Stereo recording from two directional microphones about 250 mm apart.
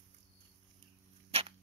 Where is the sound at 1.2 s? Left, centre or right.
Right.